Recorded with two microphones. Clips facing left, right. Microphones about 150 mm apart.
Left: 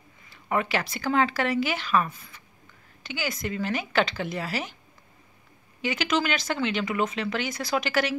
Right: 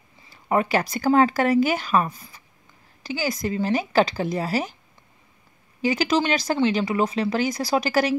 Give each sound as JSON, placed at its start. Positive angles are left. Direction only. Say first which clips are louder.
{"t": 0.2, "sound": "speech", "louder": "right 5 dB", "side_deg": -40}
{"t": 5.8, "sound": "speech", "louder": "right 5 dB", "side_deg": -35}